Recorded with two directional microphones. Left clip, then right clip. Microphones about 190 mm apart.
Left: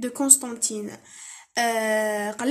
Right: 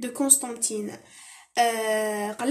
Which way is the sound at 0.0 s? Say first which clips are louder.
Left 2 dB; 25° left (ahead or behind).